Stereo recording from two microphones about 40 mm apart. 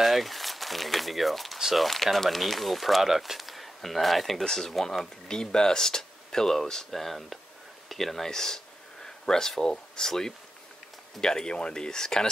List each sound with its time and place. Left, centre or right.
0.0 s speech: centre
9.0 s a sound: centre
9.6 s speech: centre